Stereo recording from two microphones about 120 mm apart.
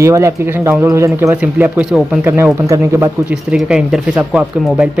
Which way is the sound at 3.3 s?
10° right (ahead or behind).